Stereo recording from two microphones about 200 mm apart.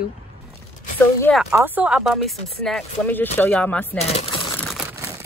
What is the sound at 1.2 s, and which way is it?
Speech, 5° left (ahead or behind).